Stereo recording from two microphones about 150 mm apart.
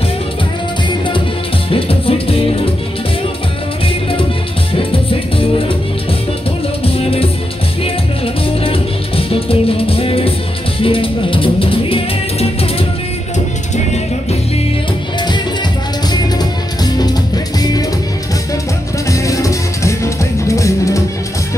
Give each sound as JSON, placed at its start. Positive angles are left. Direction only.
{"t": 1.7, "sound": "music", "side_deg": 40}
{"t": 6.8, "sound": "music", "side_deg": 40}
{"t": 8.6, "sound": "music", "side_deg": 40}
{"t": 16.8, "sound": "music", "side_deg": 25}
{"t": 19.0, "sound": "music", "side_deg": 20}